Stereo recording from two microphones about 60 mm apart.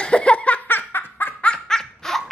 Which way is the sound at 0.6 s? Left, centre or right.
Left.